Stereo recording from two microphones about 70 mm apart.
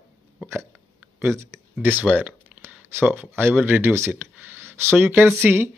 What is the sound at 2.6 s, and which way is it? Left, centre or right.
Speech, right.